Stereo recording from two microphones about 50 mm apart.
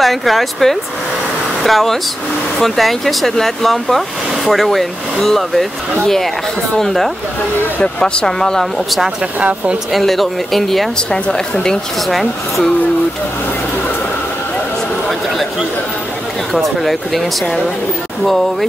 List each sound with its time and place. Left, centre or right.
0.0 s speech: centre
6.8 s speech: centre
7.8 s speech: centre
9.4 s speech: right
9.9 s speech: centre
11.0 s speech: centre
16.5 s speech: centre